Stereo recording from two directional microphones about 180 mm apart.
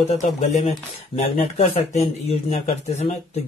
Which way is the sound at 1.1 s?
35° left (ahead or behind).